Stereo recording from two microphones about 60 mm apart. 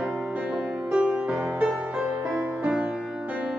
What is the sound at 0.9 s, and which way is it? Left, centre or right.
Music, centre.